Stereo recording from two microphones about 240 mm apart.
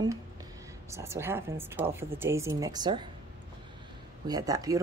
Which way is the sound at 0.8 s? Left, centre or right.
Centre.